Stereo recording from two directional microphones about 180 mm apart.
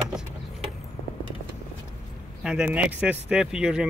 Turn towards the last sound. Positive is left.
turn(degrees=-5)  # may be behind; listen again after turning